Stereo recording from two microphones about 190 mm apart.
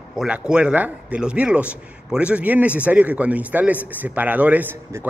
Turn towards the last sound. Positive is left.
turn(degrees=-10)  # may be behind; listen again after turning